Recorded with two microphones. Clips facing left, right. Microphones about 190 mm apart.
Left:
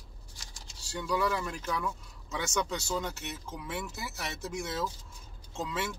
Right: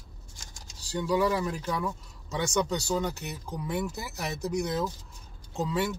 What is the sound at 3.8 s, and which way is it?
Speech, 40° right (ahead or behind).